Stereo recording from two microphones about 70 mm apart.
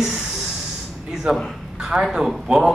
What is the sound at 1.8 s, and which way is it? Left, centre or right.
Speech, centre.